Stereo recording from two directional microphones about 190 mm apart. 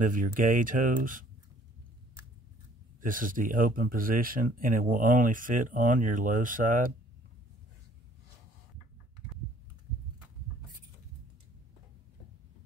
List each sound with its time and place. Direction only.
0.0 s speech: 45° right (ahead or behind)
3.0 s speech: 45° right (ahead or behind)